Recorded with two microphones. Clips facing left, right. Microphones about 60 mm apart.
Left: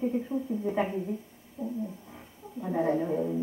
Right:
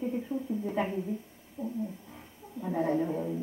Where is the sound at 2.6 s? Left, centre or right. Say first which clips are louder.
Left 1 dB; centre.